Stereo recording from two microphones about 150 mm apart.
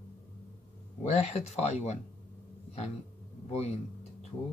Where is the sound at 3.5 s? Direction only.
45° left (ahead or behind).